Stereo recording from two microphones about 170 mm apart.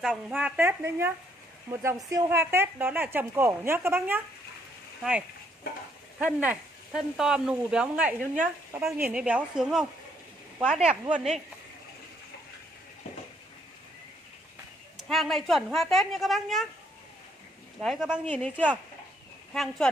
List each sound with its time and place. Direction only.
0.0 s a woman's voice: centre (ahead or behind)
6.1 s speech: 5° right (ahead or behind)
15.0 s speech: centre (ahead or behind)
17.8 s speech: 5° right (ahead or behind)
18.2 s speech: 10° left (ahead or behind)